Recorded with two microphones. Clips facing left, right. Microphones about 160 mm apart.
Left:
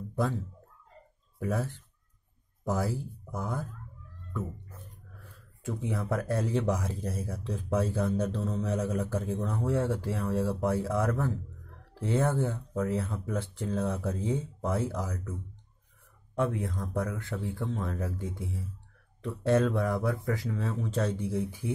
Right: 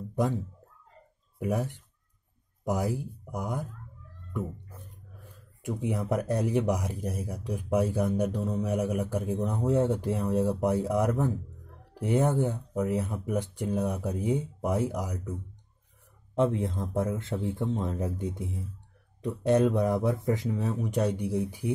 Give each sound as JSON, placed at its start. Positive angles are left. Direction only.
{"t": 0.1, "sound": "a sound", "side_deg": -15}
{"t": 1.4, "sound": "speech", "side_deg": -15}
{"t": 16.3, "sound": "speech", "side_deg": -20}